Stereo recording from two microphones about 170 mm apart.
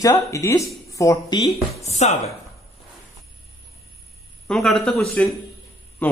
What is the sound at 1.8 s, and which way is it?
Speech, 40° left (ahead or behind).